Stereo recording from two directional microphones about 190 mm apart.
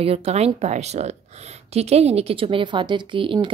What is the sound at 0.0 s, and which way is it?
A woman's voice, 30° right (ahead or behind).